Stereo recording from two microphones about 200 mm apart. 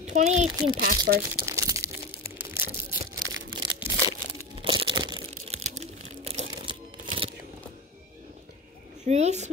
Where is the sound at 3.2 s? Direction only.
65° right (ahead or behind).